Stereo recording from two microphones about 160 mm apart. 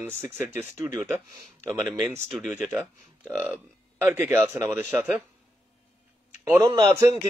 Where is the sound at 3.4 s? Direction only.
15° right (ahead or behind).